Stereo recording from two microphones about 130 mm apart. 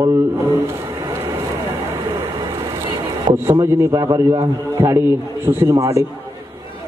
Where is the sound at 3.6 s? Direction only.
25° right (ahead or behind).